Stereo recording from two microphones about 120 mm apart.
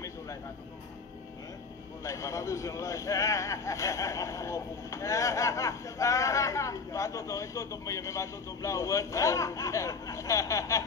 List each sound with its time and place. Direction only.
2.0 s speech: 25° left (ahead or behind)